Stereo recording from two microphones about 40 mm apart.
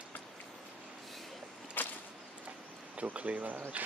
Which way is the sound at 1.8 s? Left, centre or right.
Left.